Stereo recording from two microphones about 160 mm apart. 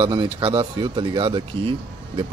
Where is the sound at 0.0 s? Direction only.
30° right (ahead or behind).